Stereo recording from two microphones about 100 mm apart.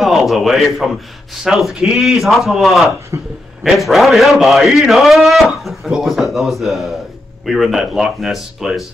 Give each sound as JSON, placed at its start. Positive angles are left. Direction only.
{"t": 0.0, "sound": "a man's voice", "side_deg": 0}
{"t": 3.1, "sound": "a man's voice", "side_deg": -30}
{"t": 3.6, "sound": "a man's voice", "side_deg": 0}